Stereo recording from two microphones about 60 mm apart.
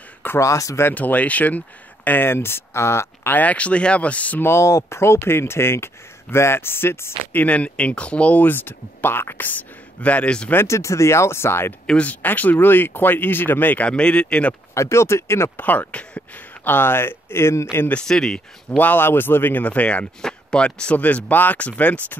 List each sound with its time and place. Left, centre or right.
0.4 s speech: left
0.9 s speech: left
3.3 s speech: left
4.4 s speech: left
7.3 s speech: left
10.7 s speech: left
11.8 s speech: centre
13.8 s speech: centre
14.7 s speech: left
15.6 s speech: left
18.0 s speech: centre
18.8 s speech: left
19.6 s speech: left
20.2 s speech: centre